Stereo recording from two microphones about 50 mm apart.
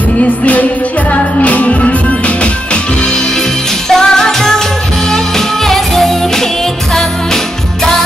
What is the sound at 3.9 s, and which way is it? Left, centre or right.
Music, centre.